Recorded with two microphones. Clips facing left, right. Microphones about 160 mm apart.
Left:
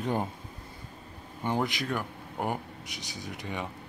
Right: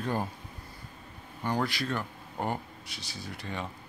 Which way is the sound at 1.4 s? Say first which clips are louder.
Left 1 dB; 20° left (ahead or behind).